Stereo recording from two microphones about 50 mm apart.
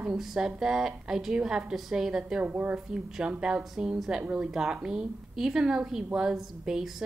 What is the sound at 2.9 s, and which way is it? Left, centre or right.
Speech, centre.